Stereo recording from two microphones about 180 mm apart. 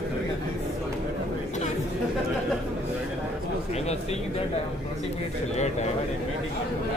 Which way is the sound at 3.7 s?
35° left (ahead or behind).